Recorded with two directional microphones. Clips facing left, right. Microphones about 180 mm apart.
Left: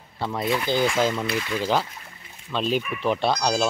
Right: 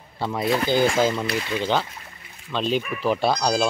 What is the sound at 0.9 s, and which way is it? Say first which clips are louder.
Speech: right 2 dB; 5° right (ahead or behind).